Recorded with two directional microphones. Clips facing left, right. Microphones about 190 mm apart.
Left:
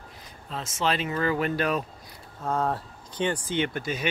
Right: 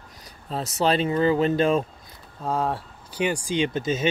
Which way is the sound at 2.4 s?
10° right (ahead or behind).